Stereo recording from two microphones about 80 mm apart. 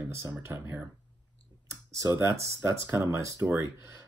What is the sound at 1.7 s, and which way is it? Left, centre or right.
Speech, right.